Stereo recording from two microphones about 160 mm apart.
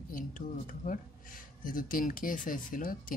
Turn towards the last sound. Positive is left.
turn(degrees=60)  # may be behind; listen again after turning